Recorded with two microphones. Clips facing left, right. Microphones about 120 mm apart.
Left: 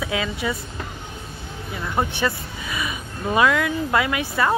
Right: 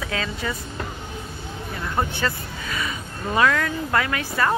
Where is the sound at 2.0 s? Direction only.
15° left (ahead or behind).